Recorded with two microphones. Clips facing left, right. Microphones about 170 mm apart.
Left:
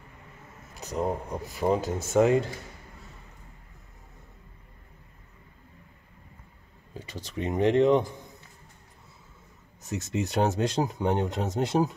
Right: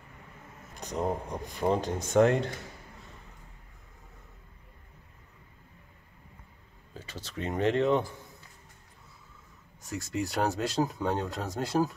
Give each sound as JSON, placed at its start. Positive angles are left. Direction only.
{"t": 0.7, "sound": "speech", "side_deg": 5}
{"t": 6.9, "sound": "speech", "side_deg": 15}
{"t": 9.8, "sound": "speech", "side_deg": 20}